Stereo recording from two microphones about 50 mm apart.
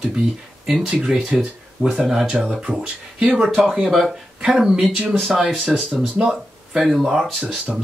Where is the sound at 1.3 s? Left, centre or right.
Right.